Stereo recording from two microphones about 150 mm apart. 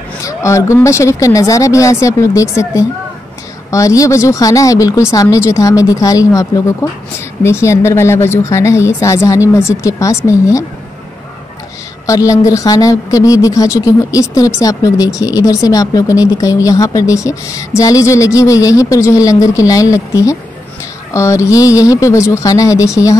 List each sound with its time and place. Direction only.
0.2 s a woman's voice: 20° left (ahead or behind)
12.1 s a woman's voice: 20° left (ahead or behind)